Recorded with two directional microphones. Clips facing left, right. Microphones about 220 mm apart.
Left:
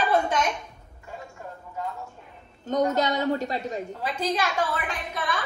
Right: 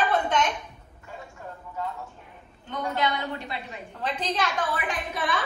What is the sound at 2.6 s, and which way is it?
A woman's voice, 45° left (ahead or behind).